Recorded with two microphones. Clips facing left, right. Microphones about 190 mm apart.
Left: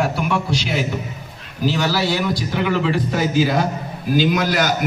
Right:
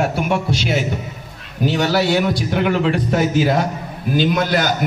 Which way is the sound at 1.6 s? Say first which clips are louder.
Right 3 dB; 60° right (ahead or behind).